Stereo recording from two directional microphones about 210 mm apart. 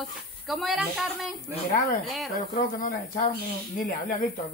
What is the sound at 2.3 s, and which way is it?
Speech, 40° left (ahead or behind).